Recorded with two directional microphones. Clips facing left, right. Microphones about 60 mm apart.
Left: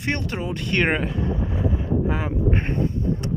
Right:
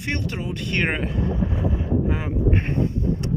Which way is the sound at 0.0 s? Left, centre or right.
Centre.